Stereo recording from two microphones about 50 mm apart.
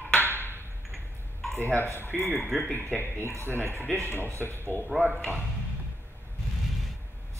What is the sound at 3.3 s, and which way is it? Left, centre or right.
A man's voice, right.